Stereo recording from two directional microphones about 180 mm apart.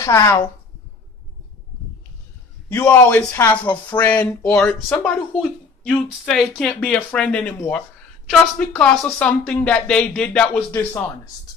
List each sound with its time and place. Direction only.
0.0 s speech: 15° left (ahead or behind)
2.7 s speech: 10° left (ahead or behind)